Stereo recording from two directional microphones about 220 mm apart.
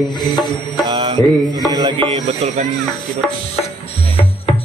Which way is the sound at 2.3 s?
30° right (ahead or behind).